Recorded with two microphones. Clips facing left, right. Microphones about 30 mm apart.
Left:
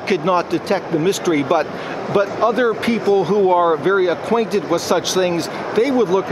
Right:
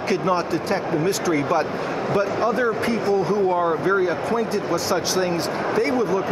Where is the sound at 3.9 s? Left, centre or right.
Left.